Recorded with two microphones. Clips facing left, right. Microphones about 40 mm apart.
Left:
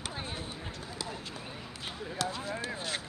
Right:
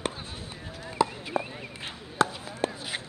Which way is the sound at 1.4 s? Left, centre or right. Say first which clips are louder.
Right 14 dB; right.